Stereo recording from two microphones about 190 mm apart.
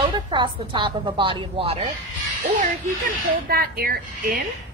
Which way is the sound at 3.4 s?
50° right (ahead or behind).